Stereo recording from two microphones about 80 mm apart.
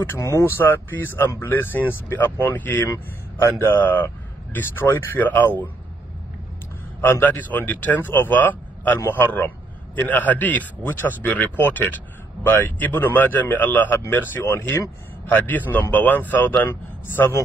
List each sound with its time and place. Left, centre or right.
0.2 s speech: left
0.6 s a man's voice: left
7.0 s speech: left
15.3 s speech: left